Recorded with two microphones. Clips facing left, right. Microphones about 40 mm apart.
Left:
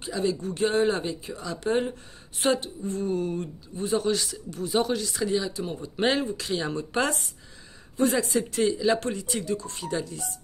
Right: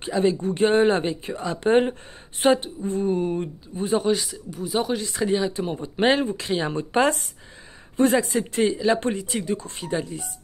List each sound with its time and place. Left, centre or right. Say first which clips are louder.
0.0 s speech: right 6 dB; right
2.4 s speech: right 5 dB; right; by 4.9 s centre
4.9 s speech: right 3 dB; right
8.0 s speech: right 4 dB; right